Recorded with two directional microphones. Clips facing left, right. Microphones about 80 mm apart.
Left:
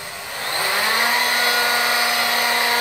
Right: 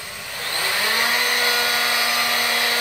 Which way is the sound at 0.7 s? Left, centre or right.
Left.